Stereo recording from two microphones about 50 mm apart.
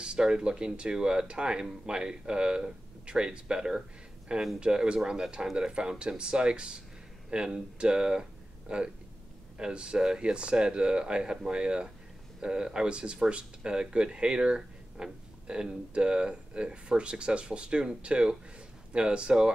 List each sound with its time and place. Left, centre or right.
0.0 s speech: centre